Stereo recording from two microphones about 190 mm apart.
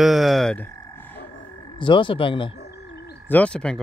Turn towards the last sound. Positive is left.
turn(degrees=5)  # may be behind; listen again after turning